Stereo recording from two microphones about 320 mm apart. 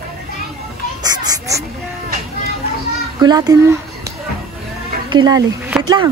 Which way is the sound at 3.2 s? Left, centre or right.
Centre.